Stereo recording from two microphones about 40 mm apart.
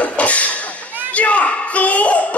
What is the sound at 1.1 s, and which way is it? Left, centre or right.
Speech, left.